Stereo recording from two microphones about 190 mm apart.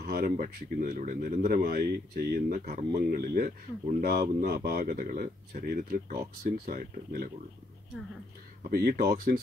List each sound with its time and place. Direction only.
0.0 s speech: 50° right (ahead or behind)
8.6 s speech: 55° right (ahead or behind)